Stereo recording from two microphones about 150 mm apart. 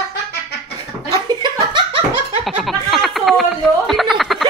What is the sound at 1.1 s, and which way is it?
Laughter, 35° right (ahead or behind).